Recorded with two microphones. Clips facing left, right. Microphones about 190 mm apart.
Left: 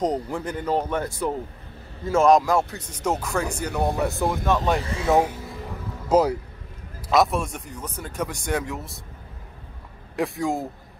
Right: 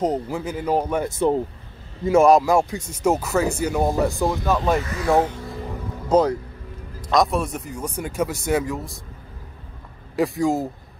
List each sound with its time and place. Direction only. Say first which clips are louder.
0.0 s speech: right 2 dB; 5° right (ahead or behind)
1.0 s speech: right 6 dB; 25° right (ahead or behind)
2.0 s speech: right 3 dB; 10° right (ahead or behind)
5.1 s speech: right 1 dB; 10° left (ahead or behind)
10.1 s speech: right 4 dB; centre (ahead or behind)